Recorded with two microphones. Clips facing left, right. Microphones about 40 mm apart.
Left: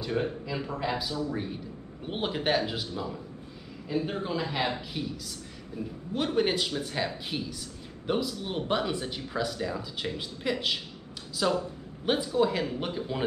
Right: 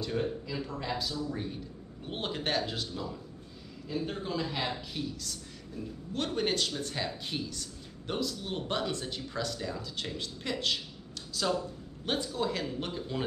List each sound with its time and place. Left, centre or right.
0.0 s speech: centre